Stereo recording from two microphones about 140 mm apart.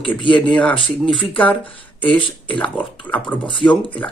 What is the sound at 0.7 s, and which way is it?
Speech, 35° left (ahead or behind).